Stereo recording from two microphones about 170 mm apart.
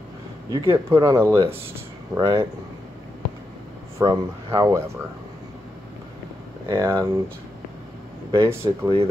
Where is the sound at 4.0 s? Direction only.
20° right (ahead or behind).